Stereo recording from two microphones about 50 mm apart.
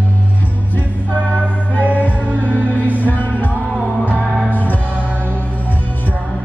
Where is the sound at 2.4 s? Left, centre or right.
Left.